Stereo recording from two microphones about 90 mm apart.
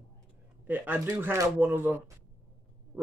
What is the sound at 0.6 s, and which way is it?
Speech, 20° right (ahead or behind).